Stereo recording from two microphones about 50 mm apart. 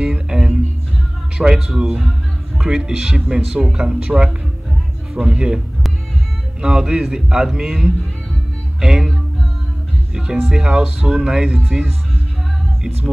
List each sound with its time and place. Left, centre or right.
0.0 s music: centre
1.4 s a man's voice: centre
6.6 s a man's voice: centre
10.1 s a man's voice: centre